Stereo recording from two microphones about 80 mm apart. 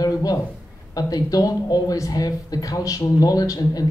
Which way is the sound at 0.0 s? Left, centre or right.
Left.